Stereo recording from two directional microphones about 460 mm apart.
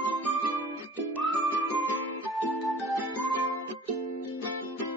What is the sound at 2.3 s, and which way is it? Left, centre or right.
Music, centre.